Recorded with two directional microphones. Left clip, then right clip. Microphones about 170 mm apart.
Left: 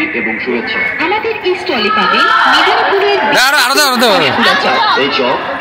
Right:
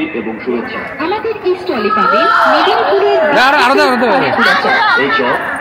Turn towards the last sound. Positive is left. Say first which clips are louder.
# even
turn(degrees=20)  # may be behind; listen again after turning